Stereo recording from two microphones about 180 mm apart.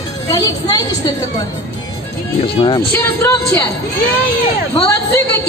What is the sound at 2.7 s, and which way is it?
Speech, 15° left (ahead or behind).